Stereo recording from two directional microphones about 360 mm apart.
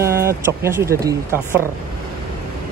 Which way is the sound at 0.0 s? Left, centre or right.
Centre.